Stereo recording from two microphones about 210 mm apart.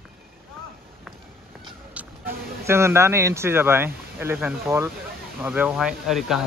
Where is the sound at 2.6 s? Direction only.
10° right (ahead or behind).